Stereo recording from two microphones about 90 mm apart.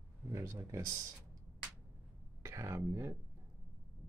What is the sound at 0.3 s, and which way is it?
Speech, 35° right (ahead or behind).